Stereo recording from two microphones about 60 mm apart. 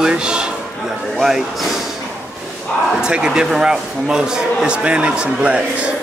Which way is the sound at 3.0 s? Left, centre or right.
Centre.